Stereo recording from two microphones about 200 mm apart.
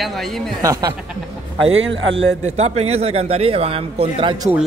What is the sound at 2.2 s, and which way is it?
A man's voice, 30° right (ahead or behind).